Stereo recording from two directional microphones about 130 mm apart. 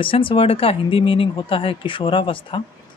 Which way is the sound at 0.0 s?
45° left (ahead or behind).